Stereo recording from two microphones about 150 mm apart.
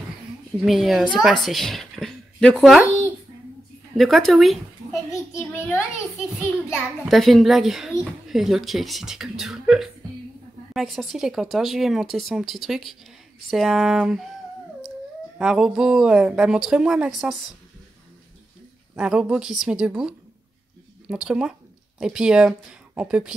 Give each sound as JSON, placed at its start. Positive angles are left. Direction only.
{"t": 0.7, "sound": "speech", "side_deg": 0}
{"t": 3.9, "sound": "speech", "side_deg": 0}
{"t": 5.1, "sound": "a child's voice", "side_deg": 15}
{"t": 6.7, "sound": "speech", "side_deg": 0}
{"t": 15.3, "sound": "speech", "side_deg": -5}
{"t": 18.9, "sound": "speech", "side_deg": -5}